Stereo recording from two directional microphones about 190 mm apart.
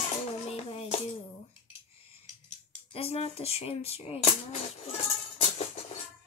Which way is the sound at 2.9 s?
30° left (ahead or behind).